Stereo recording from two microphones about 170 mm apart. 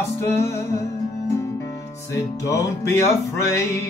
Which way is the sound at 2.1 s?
20° left (ahead or behind).